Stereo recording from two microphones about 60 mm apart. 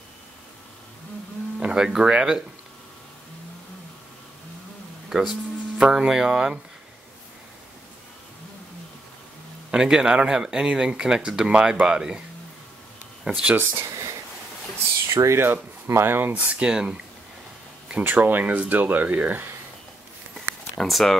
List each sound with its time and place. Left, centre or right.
1.6 s speech: centre
5.1 s speech: centre
9.7 s speech: centre
13.3 s speech: right
15.1 s speech: right
15.4 s speech: right
16.3 s speech: right
18.0 s speech: right
20.3 s a sound: centre